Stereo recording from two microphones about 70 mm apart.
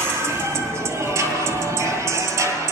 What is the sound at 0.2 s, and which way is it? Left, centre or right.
Music, right.